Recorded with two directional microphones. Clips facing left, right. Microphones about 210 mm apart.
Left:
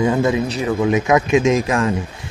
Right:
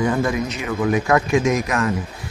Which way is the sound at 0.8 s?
20° left (ahead or behind).